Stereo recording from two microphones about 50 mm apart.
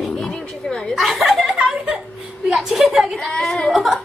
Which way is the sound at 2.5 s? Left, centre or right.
Centre.